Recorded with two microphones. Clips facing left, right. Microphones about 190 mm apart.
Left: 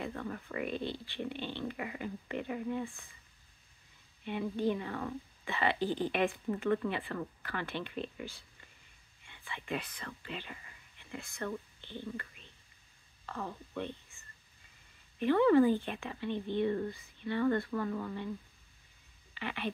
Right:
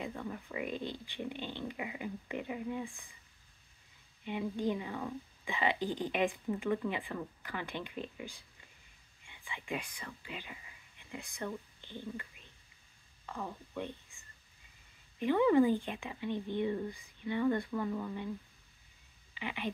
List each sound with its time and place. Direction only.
0.0 s speech: 10° right (ahead or behind)
4.3 s speech: 15° right (ahead or behind)
14.1 s a sound: 15° right (ahead or behind)
15.1 s speech: 15° right (ahead or behind)
19.3 s speech: 15° right (ahead or behind)